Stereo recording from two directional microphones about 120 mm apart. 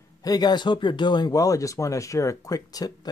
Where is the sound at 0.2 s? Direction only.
35° left (ahead or behind).